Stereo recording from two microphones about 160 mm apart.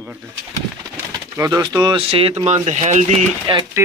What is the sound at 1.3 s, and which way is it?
Speech, 20° right (ahead or behind).